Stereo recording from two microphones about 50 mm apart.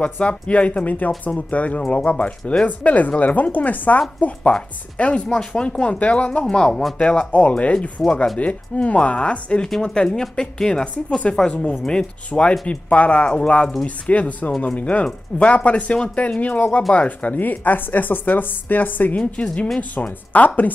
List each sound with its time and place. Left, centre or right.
0.0 s a woman's voice: left
4.2 s speech: centre
6.5 s a woman's voice: centre; by 20.7 s left